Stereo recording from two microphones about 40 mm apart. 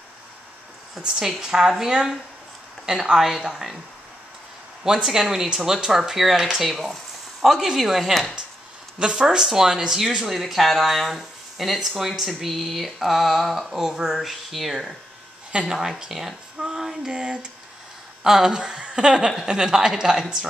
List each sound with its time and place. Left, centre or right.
0.9 s speech: centre
4.9 s speech: centre
6.7 s speech: centre
9.0 s speech: centre
13.7 s speech: centre
14.1 s speech: centre
16.6 s a sound: centre
17.1 s speech: right